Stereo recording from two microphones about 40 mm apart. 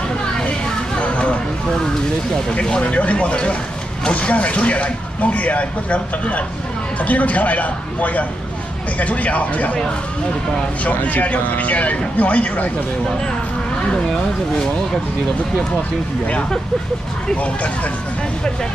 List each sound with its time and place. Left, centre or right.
0.9 s a sound: left
2.5 s speech: left
2.8 s speech: left
11.1 s speech: left
17.4 s speech: left